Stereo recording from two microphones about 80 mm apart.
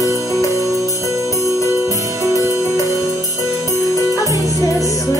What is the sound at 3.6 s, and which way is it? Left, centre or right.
Music, left.